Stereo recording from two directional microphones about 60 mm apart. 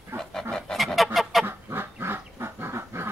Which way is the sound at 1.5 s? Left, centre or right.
Right.